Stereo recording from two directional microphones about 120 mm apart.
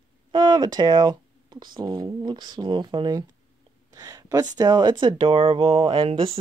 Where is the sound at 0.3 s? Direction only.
35° right (ahead or behind).